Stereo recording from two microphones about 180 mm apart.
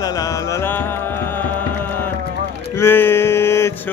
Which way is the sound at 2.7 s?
15° left (ahead or behind).